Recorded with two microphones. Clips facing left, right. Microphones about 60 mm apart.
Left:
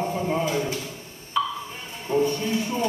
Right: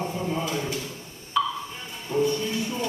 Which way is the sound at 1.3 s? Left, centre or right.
Centre.